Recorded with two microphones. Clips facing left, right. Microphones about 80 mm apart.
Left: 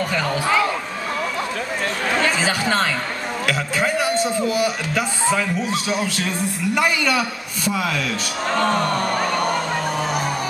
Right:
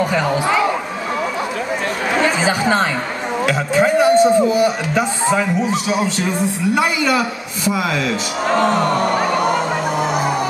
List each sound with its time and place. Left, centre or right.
0.0 s a sound: centre
2.1 s speech: centre
3.4 s a man's voice: right
5.4 s a man's voice: centre
9.0 s music: centre